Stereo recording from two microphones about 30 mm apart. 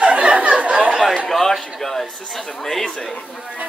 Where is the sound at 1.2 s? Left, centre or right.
Centre.